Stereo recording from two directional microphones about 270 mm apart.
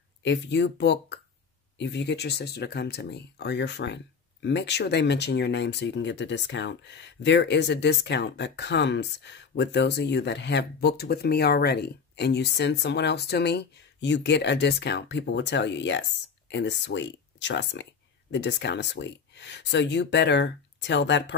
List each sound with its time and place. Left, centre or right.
0.2 s speech: left